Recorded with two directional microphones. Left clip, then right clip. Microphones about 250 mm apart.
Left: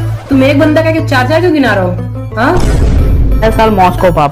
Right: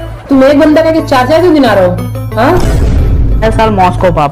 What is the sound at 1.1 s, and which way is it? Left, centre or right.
Speech, centre.